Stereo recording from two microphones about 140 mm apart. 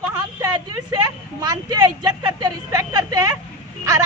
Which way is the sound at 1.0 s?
30° right (ahead or behind).